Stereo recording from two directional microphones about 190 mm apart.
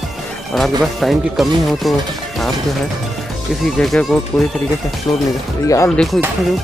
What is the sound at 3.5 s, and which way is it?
Speech, centre (ahead or behind).